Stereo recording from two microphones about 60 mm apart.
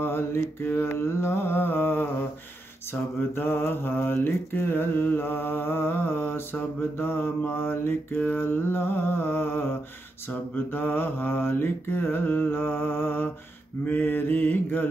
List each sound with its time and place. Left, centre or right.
0.0 s mantra: left